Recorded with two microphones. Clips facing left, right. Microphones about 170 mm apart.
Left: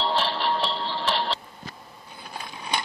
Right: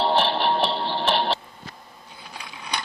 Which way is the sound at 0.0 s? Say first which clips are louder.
Right 4 dB; 65° right (ahead or behind).